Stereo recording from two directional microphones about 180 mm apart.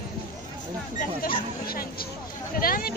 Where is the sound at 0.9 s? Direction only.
55° left (ahead or behind).